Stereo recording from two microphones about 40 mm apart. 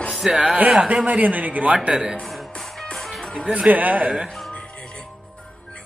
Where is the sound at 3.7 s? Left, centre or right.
Right.